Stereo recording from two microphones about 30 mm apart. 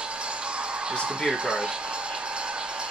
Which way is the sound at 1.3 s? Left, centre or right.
Right.